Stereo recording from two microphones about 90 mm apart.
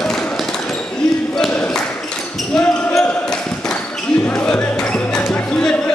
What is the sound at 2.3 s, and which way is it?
Basketball bounce, 5° left (ahead or behind).